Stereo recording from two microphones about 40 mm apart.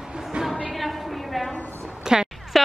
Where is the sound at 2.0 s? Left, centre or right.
Centre.